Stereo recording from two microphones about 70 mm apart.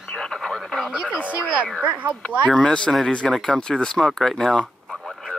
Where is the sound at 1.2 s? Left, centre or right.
Centre.